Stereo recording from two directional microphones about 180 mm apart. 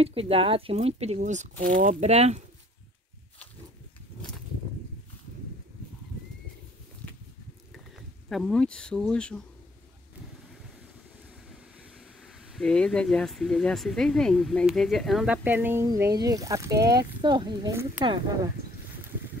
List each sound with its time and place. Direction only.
0.0 s speech: 30° right (ahead or behind)
8.3 s speech: centre (ahead or behind)
12.2 s speech: centre (ahead or behind); by 18.5 s 25° right (ahead or behind)